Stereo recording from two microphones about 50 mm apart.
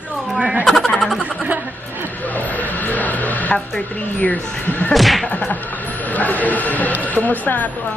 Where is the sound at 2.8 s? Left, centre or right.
Left.